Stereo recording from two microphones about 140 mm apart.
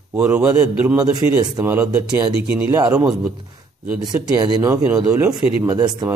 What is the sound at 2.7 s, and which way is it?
Speech, 20° right (ahead or behind).